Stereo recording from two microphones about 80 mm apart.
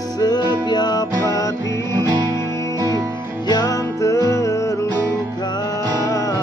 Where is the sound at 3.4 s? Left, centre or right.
Left.